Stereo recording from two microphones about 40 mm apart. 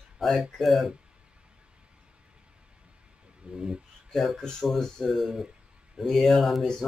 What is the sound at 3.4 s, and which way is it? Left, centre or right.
Speech, right.